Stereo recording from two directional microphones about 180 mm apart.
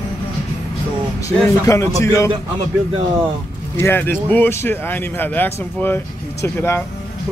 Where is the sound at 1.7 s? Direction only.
15° left (ahead or behind).